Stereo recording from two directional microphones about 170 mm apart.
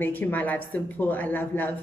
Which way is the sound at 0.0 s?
10° left (ahead or behind).